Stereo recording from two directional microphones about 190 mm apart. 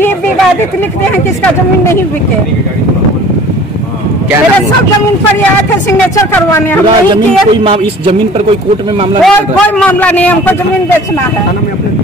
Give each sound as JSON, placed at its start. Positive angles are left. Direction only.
{"t": 1.1, "sound": "a man's voice", "side_deg": 10}
{"t": 6.1, "sound": "a man's voice", "side_deg": 10}
{"t": 7.6, "sound": "a man's voice", "side_deg": -30}
{"t": 9.2, "sound": "a man's voice", "side_deg": 5}